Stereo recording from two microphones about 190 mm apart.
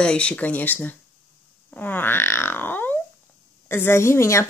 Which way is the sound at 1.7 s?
10° left (ahead or behind).